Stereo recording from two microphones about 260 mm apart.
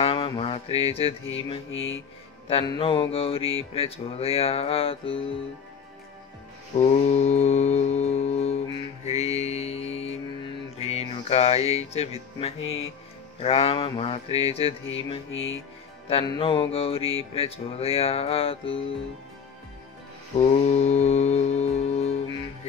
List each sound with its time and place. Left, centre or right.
0.0 s a sound: left
1.7 s music: left
2.4 s music: left
6.8 s music: left
15.3 s music: left
16.1 s music: centre
20.5 s music: left